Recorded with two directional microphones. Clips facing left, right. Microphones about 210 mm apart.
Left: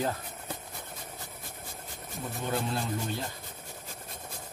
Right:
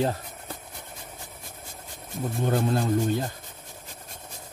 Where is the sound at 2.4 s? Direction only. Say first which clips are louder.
Right 7 dB; 45° right (ahead or behind).